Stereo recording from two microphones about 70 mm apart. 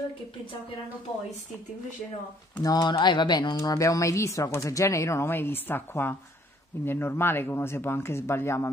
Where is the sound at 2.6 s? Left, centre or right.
Left.